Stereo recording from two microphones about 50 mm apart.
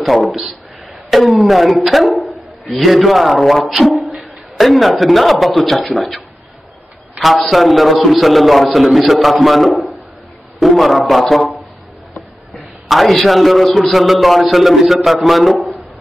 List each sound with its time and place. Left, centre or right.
0.0 s a man's voice: centre
12.8 s a man's voice: centre